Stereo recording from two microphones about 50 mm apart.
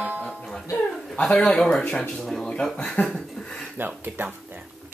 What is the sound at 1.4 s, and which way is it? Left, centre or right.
Speech, centre.